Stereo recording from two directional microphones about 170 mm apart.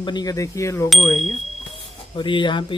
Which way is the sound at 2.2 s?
30° left (ahead or behind).